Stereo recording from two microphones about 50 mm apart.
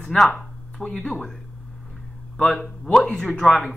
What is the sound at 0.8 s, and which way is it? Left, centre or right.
Speech, centre.